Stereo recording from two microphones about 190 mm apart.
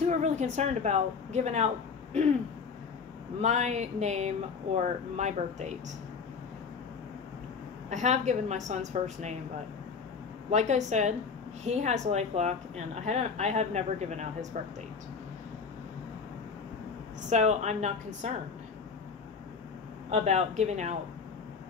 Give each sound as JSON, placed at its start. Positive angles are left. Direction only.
{"t": 0.0, "sound": "speech", "side_deg": -35}
{"t": 3.3, "sound": "speech", "side_deg": -35}
{"t": 7.9, "sound": "speech", "side_deg": -35}
{"t": 10.5, "sound": "speech", "side_deg": -35}
{"t": 17.3, "sound": "speech", "side_deg": -35}
{"t": 20.1, "sound": "speech", "side_deg": -35}